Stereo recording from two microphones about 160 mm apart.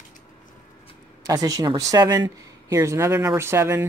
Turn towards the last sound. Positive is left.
turn(degrees=-15)  # may be behind; listen again after turning